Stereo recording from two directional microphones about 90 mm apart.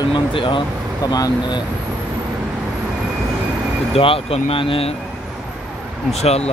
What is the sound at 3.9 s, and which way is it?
Speech, 90° left.